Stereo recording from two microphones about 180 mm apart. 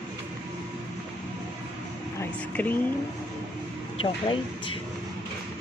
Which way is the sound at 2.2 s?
10° left (ahead or behind).